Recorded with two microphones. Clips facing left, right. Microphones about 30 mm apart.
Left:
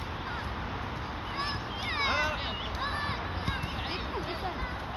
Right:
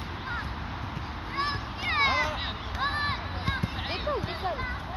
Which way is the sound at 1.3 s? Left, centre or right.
Right.